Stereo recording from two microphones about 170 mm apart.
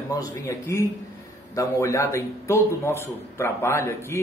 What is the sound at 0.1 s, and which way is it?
A man's voice, 20° left (ahead or behind).